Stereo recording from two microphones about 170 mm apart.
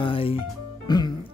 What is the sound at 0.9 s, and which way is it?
Speech, 25° left (ahead or behind).